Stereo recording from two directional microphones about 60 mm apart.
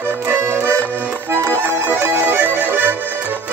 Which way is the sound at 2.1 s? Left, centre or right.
Right.